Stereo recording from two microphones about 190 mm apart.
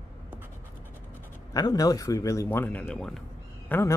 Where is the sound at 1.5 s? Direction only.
20° left (ahead or behind).